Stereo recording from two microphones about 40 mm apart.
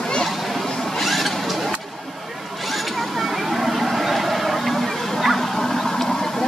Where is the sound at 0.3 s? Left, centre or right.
Centre.